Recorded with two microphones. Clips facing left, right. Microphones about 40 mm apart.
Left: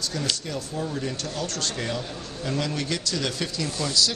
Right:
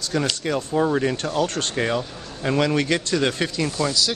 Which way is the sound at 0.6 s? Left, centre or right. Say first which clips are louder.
Right 9 dB; right.